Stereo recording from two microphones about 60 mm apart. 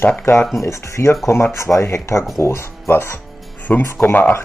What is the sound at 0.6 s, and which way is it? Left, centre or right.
Speech, left.